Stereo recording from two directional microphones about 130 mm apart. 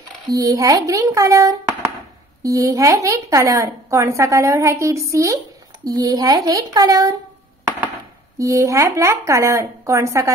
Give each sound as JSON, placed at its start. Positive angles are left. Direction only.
{"t": 0.3, "sound": "a woman's voice", "side_deg": -25}
{"t": 8.4, "sound": "a woman's voice", "side_deg": -25}